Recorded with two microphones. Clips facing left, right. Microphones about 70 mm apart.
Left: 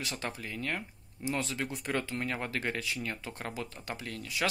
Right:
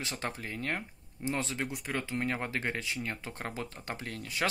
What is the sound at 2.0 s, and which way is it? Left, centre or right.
Speech, right.